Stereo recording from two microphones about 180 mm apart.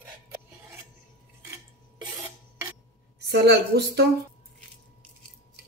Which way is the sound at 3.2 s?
65° right (ahead or behind).